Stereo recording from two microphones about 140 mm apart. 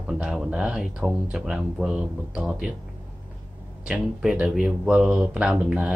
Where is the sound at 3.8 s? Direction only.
5° right (ahead or behind).